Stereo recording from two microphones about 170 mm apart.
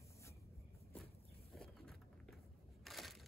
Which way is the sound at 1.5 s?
Centre (ahead or behind).